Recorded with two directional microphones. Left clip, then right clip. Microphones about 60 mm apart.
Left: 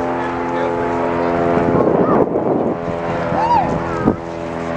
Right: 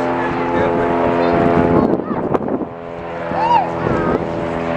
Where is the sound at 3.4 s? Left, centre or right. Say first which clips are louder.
Right 1 dB; right.